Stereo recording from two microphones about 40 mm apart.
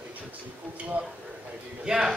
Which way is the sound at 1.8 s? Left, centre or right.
Centre.